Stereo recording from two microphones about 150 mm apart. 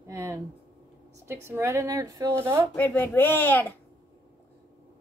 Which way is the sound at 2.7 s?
10° left (ahead or behind).